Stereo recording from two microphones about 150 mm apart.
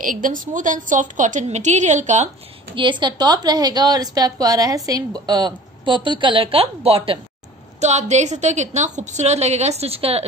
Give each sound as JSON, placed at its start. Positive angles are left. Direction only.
{"t": 0.0, "sound": "a woman's voice", "side_deg": -65}
{"t": 2.7, "sound": "a woman's voice", "side_deg": -30}